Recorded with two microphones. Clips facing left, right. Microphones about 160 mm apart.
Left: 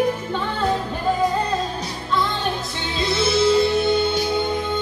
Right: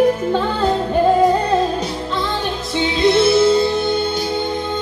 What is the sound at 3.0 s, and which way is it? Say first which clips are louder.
Music: right 6 dB; 60° right (ahead or behind).